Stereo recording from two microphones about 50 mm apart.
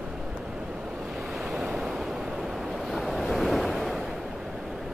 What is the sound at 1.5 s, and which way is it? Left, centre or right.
Waves, centre.